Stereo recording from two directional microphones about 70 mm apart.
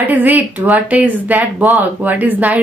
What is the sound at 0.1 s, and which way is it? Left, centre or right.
Speech, right.